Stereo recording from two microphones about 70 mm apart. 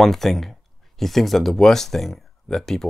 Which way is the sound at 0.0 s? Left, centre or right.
Centre.